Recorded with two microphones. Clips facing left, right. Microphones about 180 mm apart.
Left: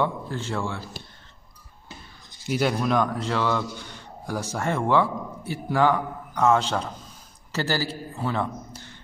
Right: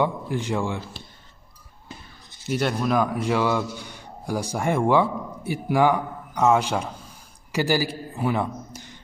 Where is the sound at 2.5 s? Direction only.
Centre (ahead or behind).